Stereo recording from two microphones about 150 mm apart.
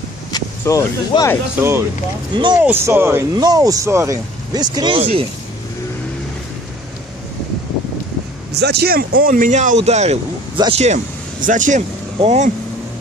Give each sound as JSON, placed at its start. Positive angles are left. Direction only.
{"t": 0.3, "sound": "speech", "side_deg": 25}
{"t": 1.6, "sound": "speech", "side_deg": -15}
{"t": 2.3, "sound": "speech", "side_deg": -30}
{"t": 2.6, "sound": "speech", "side_deg": -15}
{"t": 8.6, "sound": "speech", "side_deg": -90}